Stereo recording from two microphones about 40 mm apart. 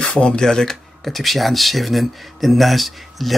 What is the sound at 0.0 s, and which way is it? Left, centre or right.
Speech, centre.